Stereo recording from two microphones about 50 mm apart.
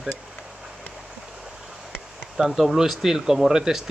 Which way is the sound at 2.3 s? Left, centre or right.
Centre.